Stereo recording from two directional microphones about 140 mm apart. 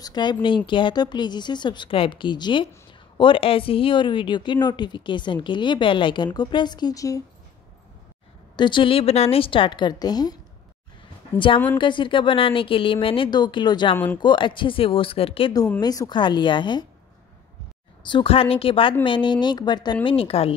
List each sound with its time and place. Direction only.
0.0 s speech: 30° left (ahead or behind)
8.5 s speech: 35° left (ahead or behind)
11.3 s speech: 35° left (ahead or behind)
15.8 s speech: 25° left (ahead or behind)
18.1 s speech: 40° left (ahead or behind)
20.1 s a woman's voice: 40° left (ahead or behind)